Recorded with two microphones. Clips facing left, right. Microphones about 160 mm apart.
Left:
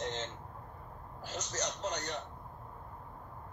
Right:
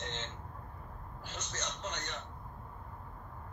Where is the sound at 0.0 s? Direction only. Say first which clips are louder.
Left 5 dB; 40° left (ahead or behind).